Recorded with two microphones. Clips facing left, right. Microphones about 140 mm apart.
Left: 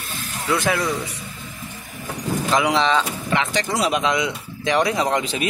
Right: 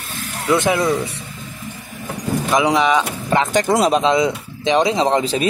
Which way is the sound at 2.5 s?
15° right (ahead or behind).